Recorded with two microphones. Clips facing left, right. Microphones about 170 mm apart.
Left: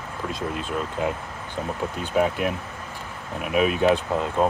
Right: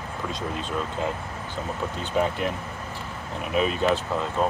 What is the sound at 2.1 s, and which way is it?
Speech, 10° left (ahead or behind).